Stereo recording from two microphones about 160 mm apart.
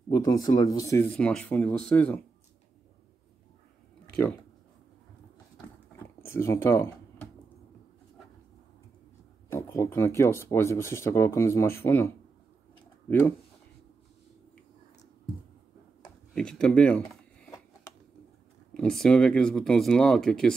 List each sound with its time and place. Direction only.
0.1 s speech: 25° left (ahead or behind)
1.1 s speech: 5° left (ahead or behind)
6.2 s speech: 15° left (ahead or behind)
9.5 s speech: 20° left (ahead or behind)
16.3 s speech: 5° left (ahead or behind)
18.7 s speech: 5° left (ahead or behind)